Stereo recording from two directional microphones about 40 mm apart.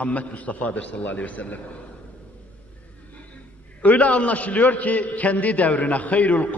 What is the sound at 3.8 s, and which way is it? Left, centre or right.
A man's voice, left.